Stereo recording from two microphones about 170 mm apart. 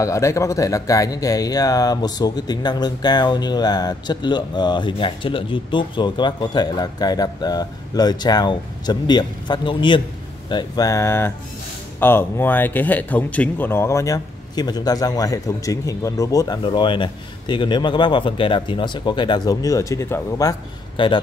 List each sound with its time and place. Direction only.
0.0 s speech: 15° left (ahead or behind)
20.9 s a man's voice: 30° left (ahead or behind)